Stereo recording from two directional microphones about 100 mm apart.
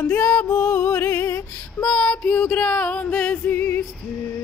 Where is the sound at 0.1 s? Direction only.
10° left (ahead or behind); by 1.9 s 30° left (ahead or behind).